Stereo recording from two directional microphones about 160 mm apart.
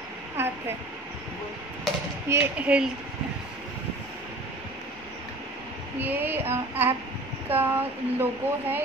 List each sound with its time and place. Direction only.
0.4 s a sound: 15° right (ahead or behind)
2.2 s speech: 15° right (ahead or behind)
5.9 s speech: 10° right (ahead or behind)